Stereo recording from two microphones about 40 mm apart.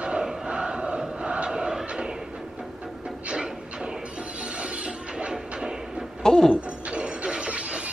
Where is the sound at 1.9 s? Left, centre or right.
Right.